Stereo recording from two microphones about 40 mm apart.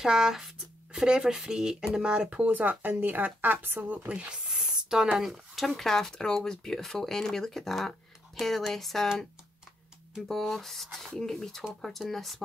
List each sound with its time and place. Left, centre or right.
0.0 s speech: centre
2.4 s speech: right
3.9 s speech: right
4.5 s a sound: centre
5.6 s speech: centre
10.2 s speech: centre